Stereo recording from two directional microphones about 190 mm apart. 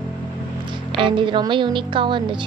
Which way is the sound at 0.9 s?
25° right (ahead or behind).